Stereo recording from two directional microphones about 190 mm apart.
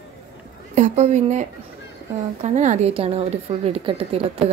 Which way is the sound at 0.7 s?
35° right (ahead or behind).